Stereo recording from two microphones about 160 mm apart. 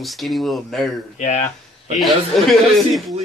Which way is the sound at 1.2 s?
45° left (ahead or behind).